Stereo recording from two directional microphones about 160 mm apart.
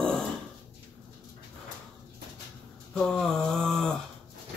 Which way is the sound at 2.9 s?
5° left (ahead or behind).